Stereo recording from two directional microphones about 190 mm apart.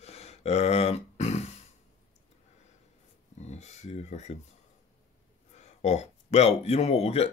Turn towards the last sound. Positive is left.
turn(degrees=30)  # may be behind; listen again after turning